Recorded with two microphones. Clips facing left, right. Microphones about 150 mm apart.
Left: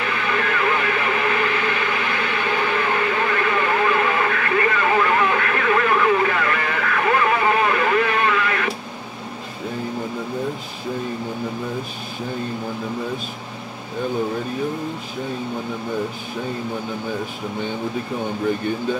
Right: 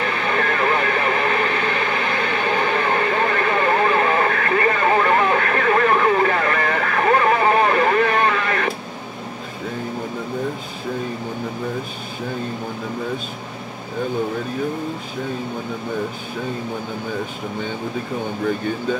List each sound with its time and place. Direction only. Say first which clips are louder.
0.0 s radio: right 2 dB; 35° right (ahead or behind)